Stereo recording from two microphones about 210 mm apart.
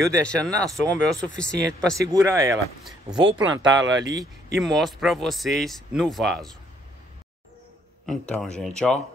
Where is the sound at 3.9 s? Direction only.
60° right (ahead or behind).